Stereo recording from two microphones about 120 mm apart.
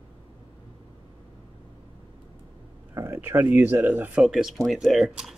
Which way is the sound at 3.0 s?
20° right (ahead or behind).